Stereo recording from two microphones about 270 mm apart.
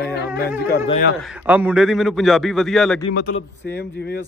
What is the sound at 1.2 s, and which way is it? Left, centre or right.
A man's voice, centre.